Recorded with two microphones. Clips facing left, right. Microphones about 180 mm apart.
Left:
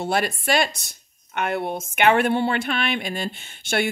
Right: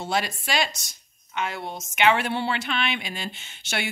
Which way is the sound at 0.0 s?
55° left (ahead or behind).